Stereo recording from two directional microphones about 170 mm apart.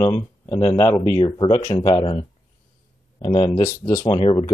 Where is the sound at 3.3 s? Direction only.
30° left (ahead or behind).